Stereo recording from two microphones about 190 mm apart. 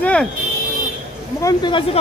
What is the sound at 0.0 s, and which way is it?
Vehicle, 5° left (ahead or behind).